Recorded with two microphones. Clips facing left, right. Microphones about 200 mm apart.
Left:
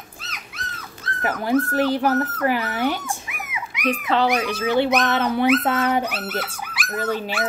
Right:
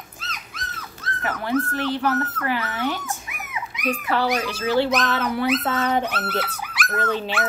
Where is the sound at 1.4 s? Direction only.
40° left (ahead or behind).